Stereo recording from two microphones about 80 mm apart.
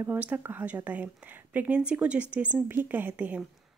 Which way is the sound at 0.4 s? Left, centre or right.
Right.